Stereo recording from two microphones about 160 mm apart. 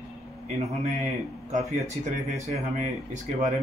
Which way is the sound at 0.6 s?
40° right (ahead or behind).